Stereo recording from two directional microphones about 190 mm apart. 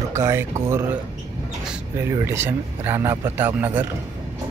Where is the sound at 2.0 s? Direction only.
15° right (ahead or behind).